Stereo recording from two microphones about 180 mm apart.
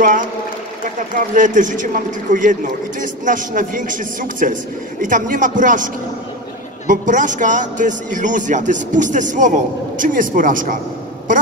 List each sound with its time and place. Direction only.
1.1 s a man's voice: 45° right (ahead or behind)
6.9 s a man's voice: 45° right (ahead or behind)